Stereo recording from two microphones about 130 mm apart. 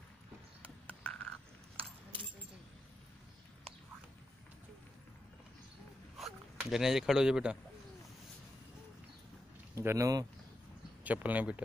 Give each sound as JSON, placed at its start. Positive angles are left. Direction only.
{"t": 0.6, "sound": "a sound", "side_deg": 10}
{"t": 6.1, "sound": "zipper", "side_deg": 0}
{"t": 9.8, "sound": "speech", "side_deg": -25}
{"t": 11.1, "sound": "speech", "side_deg": -10}